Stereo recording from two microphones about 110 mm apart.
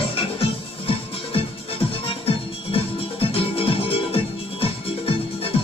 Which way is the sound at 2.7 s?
55° left (ahead or behind).